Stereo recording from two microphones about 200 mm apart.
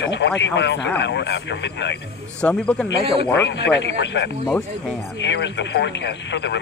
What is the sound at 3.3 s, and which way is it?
Speech, 65° left (ahead or behind).